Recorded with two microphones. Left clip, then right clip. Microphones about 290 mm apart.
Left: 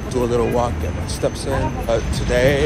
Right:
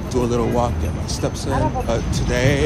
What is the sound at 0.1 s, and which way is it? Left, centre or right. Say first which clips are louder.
Speech: left 2 dB; centre.